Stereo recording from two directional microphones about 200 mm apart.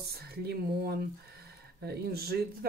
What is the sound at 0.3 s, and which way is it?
Speech, 55° right (ahead or behind).